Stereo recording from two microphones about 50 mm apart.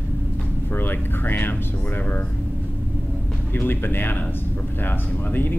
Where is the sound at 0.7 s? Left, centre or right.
Left.